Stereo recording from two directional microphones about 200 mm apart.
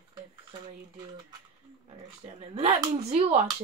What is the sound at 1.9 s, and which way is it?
Speech, 30° right (ahead or behind).